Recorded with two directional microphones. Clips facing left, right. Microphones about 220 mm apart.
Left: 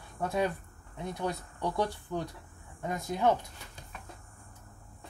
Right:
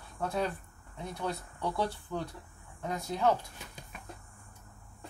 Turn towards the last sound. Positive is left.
turn(degrees=15)  # may be behind; listen again after turning